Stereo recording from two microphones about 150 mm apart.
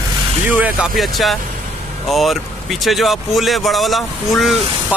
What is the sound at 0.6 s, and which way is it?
Speech, centre (ahead or behind).